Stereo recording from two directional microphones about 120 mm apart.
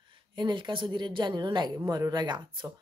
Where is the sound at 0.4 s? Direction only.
40° right (ahead or behind).